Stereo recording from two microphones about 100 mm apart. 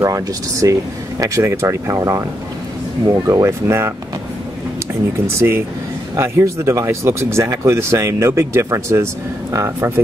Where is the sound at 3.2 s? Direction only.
30° right (ahead or behind).